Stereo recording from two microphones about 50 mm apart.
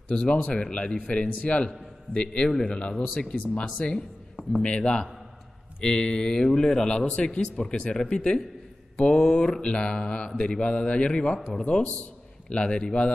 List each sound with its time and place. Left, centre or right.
0.1 s mantra: left
5.8 s speech: centre
8.9 s mantra: left